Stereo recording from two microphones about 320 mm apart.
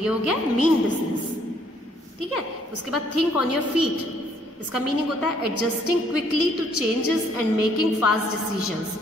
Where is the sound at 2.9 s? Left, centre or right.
Left.